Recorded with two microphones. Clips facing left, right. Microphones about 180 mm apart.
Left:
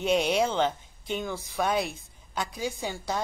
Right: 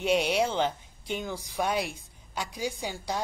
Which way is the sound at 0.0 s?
10° right (ahead or behind).